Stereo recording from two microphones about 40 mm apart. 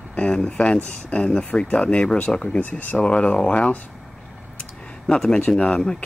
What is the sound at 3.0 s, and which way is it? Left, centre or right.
Speech, left.